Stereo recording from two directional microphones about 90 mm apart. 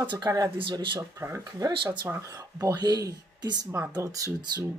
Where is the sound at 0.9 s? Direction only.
30° right (ahead or behind).